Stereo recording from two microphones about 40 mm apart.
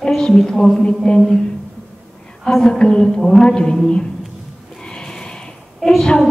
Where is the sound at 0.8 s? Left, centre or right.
Left.